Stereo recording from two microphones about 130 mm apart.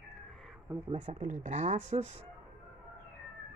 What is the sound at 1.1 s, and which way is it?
Speech, 75° right (ahead or behind).